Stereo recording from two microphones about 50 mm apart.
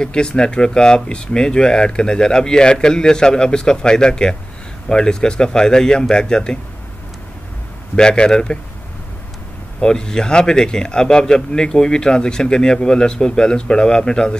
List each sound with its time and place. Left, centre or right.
0.0 s a man's voice: centre
7.9 s a man's voice: centre
9.8 s a man's voice: centre